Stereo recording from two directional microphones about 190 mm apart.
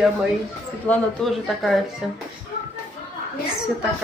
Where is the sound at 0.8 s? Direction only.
Centre (ahead or behind).